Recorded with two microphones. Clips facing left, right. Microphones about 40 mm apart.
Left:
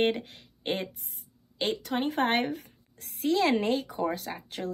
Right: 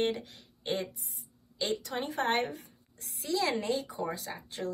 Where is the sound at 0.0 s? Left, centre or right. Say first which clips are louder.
Left 4 dB; left.